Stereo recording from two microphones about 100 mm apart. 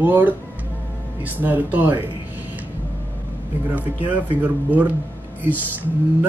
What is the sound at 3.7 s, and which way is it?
Speech, 15° right (ahead or behind).